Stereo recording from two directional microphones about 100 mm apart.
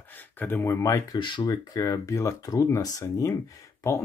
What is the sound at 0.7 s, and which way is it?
Speech, 30° left (ahead or behind).